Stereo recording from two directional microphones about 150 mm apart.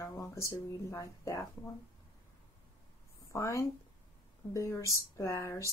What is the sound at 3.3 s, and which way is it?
Speech, 20° left (ahead or behind).